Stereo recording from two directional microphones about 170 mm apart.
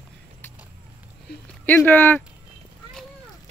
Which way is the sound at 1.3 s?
75° left (ahead or behind).